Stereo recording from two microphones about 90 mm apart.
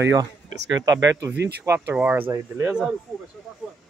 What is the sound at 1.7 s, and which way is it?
Speech, 20° right (ahead or behind).